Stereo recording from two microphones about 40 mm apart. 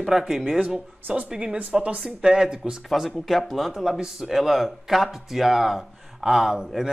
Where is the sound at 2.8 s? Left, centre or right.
Centre.